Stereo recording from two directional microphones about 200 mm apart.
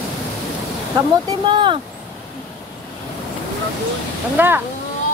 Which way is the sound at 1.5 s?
25° right (ahead or behind).